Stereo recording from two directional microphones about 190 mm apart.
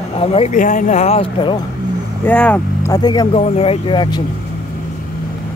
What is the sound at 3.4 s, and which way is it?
Speech, 30° left (ahead or behind).